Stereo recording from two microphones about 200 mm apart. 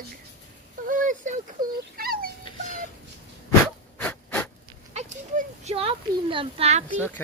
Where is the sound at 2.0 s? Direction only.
50° right (ahead or behind).